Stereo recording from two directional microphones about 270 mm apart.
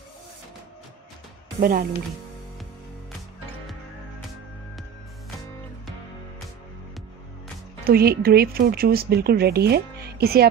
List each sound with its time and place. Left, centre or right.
1.6 s speech: right
7.8 s speech: right